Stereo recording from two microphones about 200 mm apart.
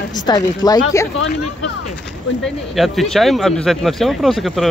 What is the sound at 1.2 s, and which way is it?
Speech, 65° left (ahead or behind).